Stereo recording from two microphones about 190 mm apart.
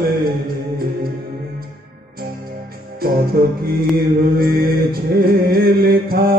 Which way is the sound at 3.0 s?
50° right (ahead or behind).